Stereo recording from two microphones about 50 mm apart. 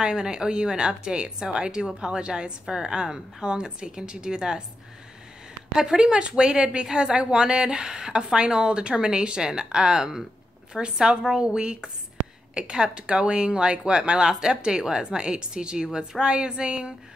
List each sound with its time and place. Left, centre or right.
0.0 s a woman's voice: centre
5.8 s a woman's voice: centre